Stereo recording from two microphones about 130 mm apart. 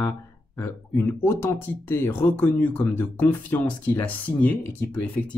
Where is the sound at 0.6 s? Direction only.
20° left (ahead or behind).